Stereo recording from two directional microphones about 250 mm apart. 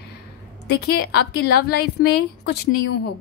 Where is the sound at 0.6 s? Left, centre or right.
Left.